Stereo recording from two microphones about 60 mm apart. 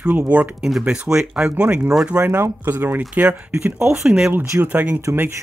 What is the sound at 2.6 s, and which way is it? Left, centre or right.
Speech, right.